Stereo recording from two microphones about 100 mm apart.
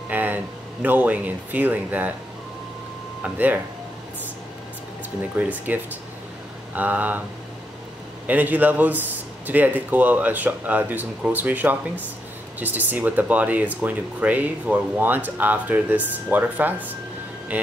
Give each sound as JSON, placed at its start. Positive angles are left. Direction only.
{"t": 0.1, "sound": "speech", "side_deg": -20}
{"t": 3.2, "sound": "speech", "side_deg": -15}
{"t": 5.3, "sound": "speech", "side_deg": -15}
{"t": 8.3, "sound": "speech", "side_deg": -15}